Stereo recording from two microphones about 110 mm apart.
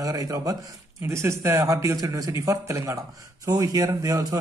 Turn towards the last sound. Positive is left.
turn(degrees=-35)  # may be behind; listen again after turning